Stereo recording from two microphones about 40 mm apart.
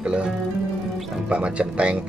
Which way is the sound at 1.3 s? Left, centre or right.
Right.